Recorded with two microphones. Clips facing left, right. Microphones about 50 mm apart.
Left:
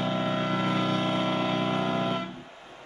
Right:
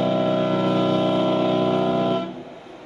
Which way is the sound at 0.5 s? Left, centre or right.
Left.